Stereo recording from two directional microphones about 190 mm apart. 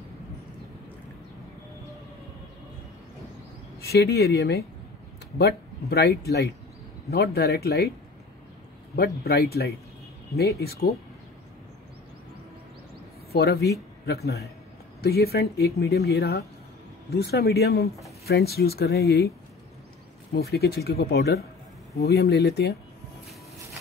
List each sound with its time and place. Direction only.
3.8 s speech: 55° left (ahead or behind)
8.9 s speech: 55° left (ahead or behind)
10.6 s speech: 55° left (ahead or behind)
13.3 s speech: 55° left (ahead or behind)
20.3 s speech: 55° left (ahead or behind)